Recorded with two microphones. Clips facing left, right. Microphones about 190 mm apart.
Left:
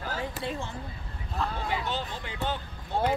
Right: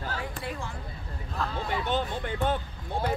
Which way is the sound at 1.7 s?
50° right (ahead or behind).